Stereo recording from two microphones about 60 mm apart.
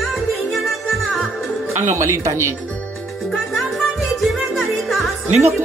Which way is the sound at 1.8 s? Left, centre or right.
Right.